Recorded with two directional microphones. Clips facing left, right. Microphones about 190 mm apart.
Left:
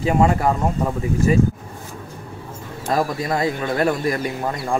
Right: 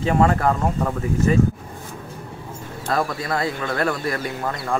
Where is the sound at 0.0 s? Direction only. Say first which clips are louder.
Left 1 dB; 10° left (ahead or behind).